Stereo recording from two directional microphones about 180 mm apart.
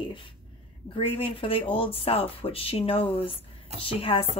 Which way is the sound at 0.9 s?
30° left (ahead or behind).